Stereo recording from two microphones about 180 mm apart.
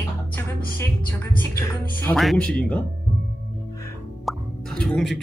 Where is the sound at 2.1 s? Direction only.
Centre (ahead or behind).